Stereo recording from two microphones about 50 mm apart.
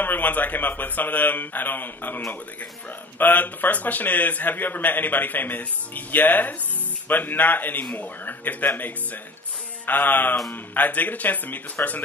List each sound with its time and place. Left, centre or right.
0.0 s a man's voice: left